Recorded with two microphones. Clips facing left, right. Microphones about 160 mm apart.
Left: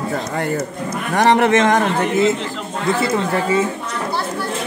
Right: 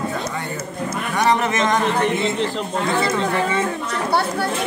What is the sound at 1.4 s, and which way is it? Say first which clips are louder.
Speech: left 5 dB; 50° left (ahead or behind).